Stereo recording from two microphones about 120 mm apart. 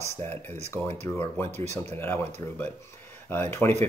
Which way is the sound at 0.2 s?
15° left (ahead or behind).